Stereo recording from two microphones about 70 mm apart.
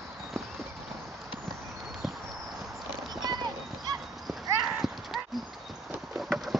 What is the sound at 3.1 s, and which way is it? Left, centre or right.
Clip-clop, right.